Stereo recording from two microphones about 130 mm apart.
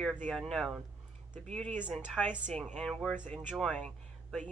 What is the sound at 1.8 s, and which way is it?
Speech, 5° right (ahead or behind).